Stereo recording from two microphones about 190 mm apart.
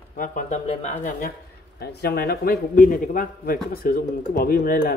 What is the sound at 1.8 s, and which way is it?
A man's voice, 55° left (ahead or behind).